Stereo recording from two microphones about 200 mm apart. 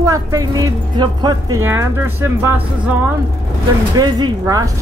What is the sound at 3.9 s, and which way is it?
Speech, 20° right (ahead or behind).